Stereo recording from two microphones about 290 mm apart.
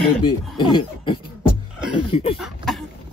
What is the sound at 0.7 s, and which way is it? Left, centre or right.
Speech, centre.